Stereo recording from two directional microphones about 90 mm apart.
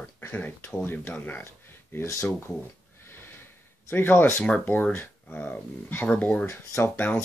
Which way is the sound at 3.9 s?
20° left (ahead or behind).